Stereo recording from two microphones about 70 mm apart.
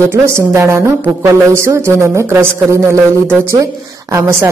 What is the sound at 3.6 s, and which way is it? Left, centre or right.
Speech, right.